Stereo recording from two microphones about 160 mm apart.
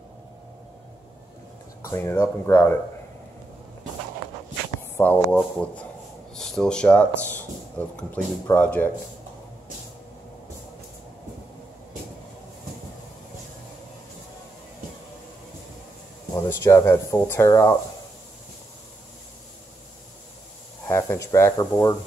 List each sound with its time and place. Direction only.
1.9 s speech: 15° left (ahead or behind)
4.9 s speech: 10° left (ahead or behind)
16.4 s speech: 15° left (ahead or behind)
20.8 s speech: 15° left (ahead or behind)